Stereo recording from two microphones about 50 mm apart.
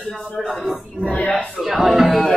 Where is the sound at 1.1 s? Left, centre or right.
Left.